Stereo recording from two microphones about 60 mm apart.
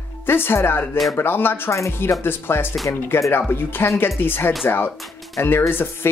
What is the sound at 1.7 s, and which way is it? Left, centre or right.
Speech, left.